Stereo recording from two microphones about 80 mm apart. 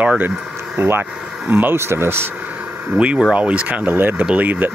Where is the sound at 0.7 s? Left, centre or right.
Right.